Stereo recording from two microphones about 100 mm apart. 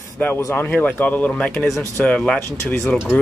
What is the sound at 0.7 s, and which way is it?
Speech, 15° left (ahead or behind).